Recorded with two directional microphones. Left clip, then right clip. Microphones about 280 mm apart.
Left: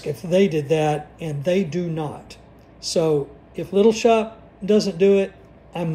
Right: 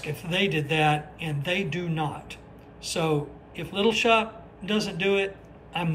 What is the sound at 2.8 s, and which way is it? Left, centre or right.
A man's voice, centre.